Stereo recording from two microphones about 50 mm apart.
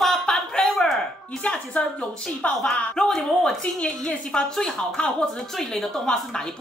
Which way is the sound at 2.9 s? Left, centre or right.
Centre.